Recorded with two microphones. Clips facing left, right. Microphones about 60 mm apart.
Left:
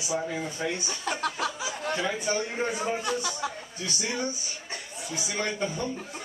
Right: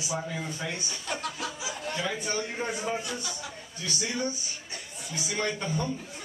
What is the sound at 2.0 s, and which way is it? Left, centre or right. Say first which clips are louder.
A man's voice: left 3 dB; left.